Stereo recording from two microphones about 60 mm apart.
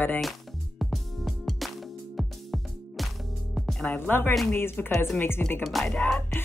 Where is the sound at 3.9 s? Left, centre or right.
Left.